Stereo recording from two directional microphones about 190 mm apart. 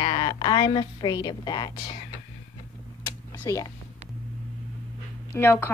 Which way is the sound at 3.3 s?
15° left (ahead or behind).